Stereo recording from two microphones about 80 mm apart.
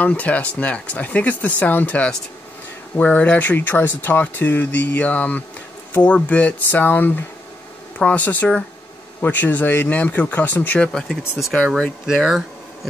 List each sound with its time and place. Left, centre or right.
0.0 s speech: centre
10.9 s speech: centre